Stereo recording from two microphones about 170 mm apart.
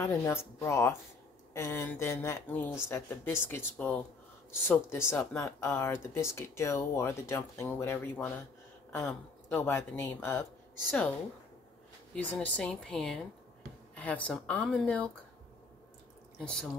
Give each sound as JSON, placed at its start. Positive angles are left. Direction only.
{"t": 0.0, "sound": "speech", "side_deg": 15}
{"t": 12.2, "sound": "a woman's voice", "side_deg": 10}
{"t": 16.3, "sound": "speech", "side_deg": 5}